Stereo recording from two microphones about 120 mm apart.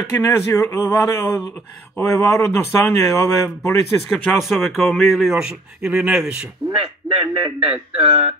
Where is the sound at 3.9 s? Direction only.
5° left (ahead or behind).